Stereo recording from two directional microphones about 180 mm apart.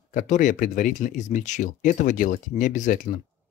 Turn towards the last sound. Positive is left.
turn(degrees=50)  # may be behind; listen again after turning